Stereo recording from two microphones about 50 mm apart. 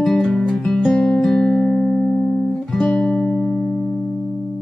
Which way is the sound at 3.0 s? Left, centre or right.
Left.